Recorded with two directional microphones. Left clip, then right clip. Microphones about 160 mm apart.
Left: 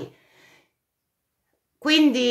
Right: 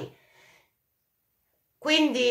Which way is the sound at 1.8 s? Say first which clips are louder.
Left 4 dB; 45° left (ahead or behind).